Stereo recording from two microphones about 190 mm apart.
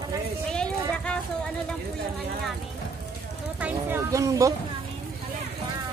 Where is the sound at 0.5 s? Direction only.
5° left (ahead or behind).